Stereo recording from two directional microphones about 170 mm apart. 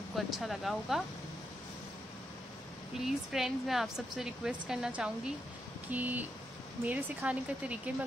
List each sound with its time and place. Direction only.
0.1 s speech: centre (ahead or behind)
3.1 s speech: centre (ahead or behind)